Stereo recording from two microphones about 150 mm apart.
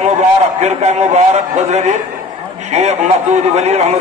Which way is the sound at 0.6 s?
50° right (ahead or behind).